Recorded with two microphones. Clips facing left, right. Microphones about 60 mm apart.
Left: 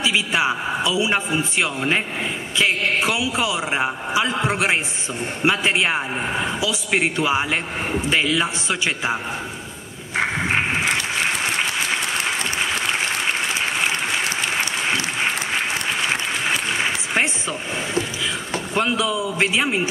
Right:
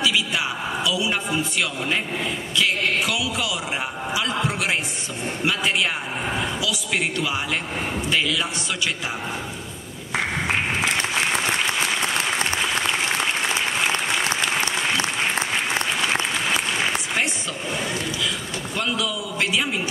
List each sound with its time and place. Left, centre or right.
0.0 s a man's voice: left
18.8 s a man's voice: left